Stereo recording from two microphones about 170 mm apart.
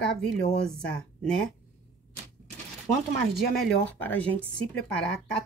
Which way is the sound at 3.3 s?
Centre (ahead or behind).